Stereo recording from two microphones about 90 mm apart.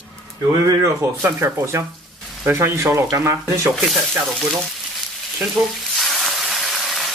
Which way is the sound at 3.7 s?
Centre (ahead or behind).